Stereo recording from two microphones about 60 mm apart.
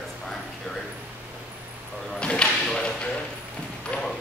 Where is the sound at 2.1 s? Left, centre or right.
Centre.